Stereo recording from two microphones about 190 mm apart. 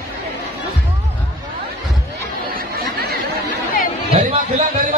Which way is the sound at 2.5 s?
55° right (ahead or behind).